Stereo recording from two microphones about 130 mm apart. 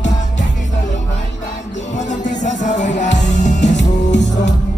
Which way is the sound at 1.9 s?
70° left (ahead or behind).